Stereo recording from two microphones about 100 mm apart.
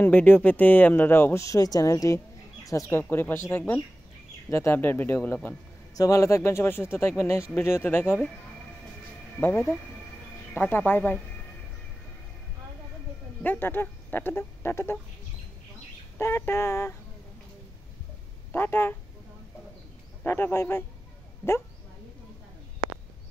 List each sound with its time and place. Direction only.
0.0 s speech: 15° left (ahead or behind)
5.9 s speech: 35° left (ahead or behind)
9.4 s speech: 20° left (ahead or behind)
13.4 s speech: 20° left (ahead or behind)
16.2 s speech: 25° left (ahead or behind)
18.5 s speech: 20° left (ahead or behind)
20.2 s speech: 25° left (ahead or behind)